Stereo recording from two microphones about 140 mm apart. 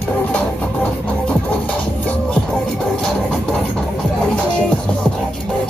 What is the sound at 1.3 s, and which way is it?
Music, 10° left (ahead or behind).